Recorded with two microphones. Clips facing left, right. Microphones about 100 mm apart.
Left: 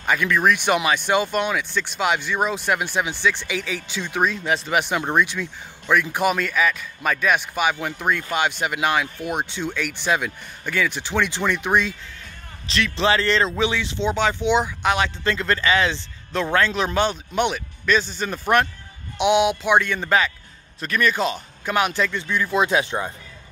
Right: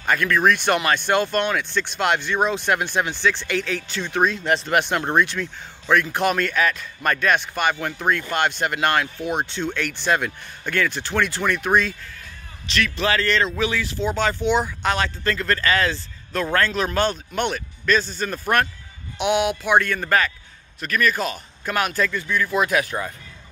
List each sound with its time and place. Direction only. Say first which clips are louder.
0.0 s speech: right 1 dB; 10° left (ahead or behind)
12.6 s speech: left 2 dB; 30° left (ahead or behind)